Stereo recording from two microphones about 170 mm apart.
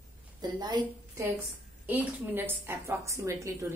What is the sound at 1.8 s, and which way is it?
A woman's voice, 10° right (ahead or behind).